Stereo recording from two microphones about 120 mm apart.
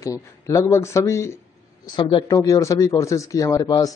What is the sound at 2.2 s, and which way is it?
A man's voice, 25° left (ahead or behind).